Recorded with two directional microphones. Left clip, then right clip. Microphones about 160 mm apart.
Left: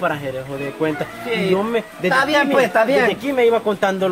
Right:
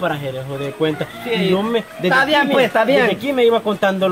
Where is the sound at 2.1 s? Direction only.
15° right (ahead or behind).